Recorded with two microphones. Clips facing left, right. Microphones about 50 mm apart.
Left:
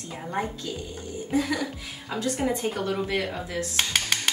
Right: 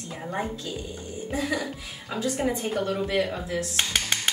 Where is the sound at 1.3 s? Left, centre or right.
Centre.